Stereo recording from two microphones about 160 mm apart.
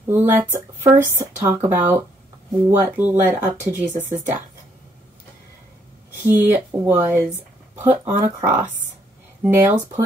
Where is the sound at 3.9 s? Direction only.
50° right (ahead or behind).